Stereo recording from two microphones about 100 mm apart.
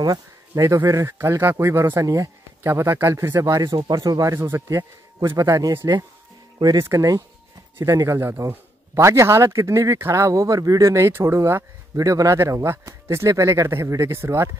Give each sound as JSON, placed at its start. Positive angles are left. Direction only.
{"t": 0.0, "sound": "a man's voice", "side_deg": -35}